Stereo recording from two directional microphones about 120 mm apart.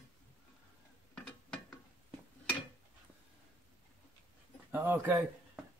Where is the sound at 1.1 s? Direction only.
5° left (ahead or behind).